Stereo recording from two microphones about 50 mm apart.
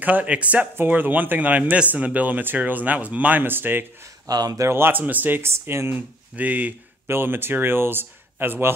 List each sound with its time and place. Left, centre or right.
0.0 s speech: right
4.6 s speech: right
4.9 s speech: right
5.4 s speech: right
5.9 s speech: right
7.1 s speech: right